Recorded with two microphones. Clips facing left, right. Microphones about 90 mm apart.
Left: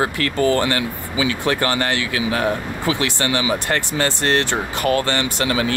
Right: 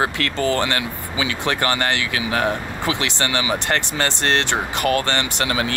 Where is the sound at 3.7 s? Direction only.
65° right (ahead or behind).